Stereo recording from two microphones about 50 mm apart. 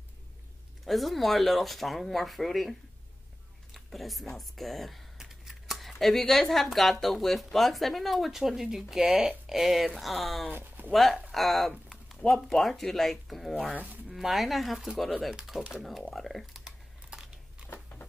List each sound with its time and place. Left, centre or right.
0.8 s speech: centre
3.7 s speech: centre
5.1 s speech: centre
9.0 s speech: right
9.5 s speech: centre
10.5 s speech: right
10.9 s speech: centre